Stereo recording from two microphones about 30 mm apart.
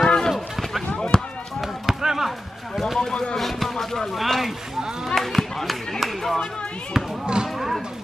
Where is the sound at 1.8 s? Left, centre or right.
Centre.